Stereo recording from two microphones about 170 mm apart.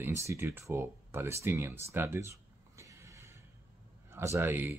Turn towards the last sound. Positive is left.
turn(degrees=-15)  # may be behind; listen again after turning